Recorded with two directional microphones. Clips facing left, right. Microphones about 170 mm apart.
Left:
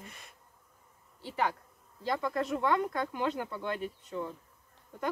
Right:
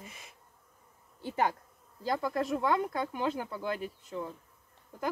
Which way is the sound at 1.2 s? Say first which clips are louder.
Right 2 dB; 20° right (ahead or behind).